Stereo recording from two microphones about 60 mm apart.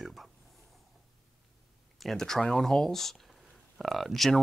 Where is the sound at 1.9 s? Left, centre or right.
Centre.